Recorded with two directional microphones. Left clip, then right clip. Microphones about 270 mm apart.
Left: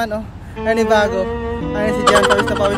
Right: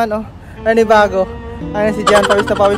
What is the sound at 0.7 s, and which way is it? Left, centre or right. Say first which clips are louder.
Speech: right 4 dB; right.